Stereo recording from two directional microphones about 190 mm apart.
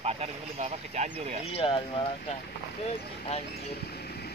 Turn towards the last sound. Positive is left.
turn(degrees=35)  # may be behind; listen again after turning